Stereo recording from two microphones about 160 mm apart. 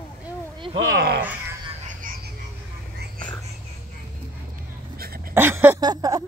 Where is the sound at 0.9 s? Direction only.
90° right.